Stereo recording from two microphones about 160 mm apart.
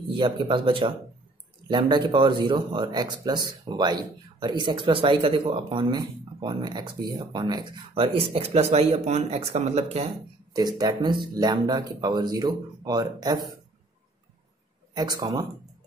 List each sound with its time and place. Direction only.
0.1 s a man's voice: 30° right (ahead or behind)
10.5 s a man's voice: 25° right (ahead or behind)
15.0 s a man's voice: 25° right (ahead or behind)